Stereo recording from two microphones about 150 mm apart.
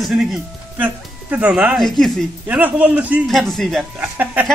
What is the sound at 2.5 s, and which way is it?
A man's voice, 10° right (ahead or behind).